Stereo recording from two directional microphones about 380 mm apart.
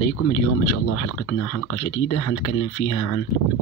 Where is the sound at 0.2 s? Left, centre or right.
Left.